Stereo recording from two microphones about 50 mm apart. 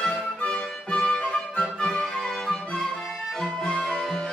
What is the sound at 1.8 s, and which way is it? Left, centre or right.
Music, centre.